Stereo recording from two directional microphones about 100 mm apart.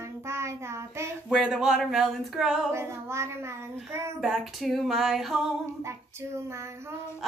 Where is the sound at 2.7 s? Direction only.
25° right (ahead or behind).